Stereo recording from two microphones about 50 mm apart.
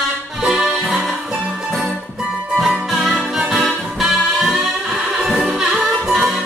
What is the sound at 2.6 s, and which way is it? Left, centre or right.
Music, centre.